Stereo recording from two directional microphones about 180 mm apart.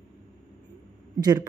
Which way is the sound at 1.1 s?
20° right (ahead or behind).